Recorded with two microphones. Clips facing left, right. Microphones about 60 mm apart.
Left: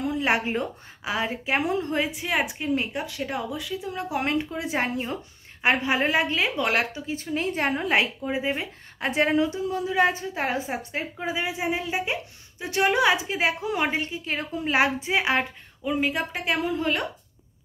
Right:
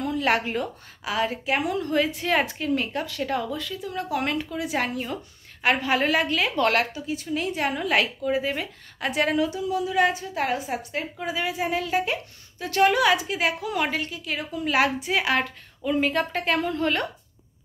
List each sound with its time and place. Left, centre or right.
0.0 s a woman's voice: left
6.5 s a woman's voice: centre
6.8 s a woman's voice: left
15.9 s a woman's voice: centre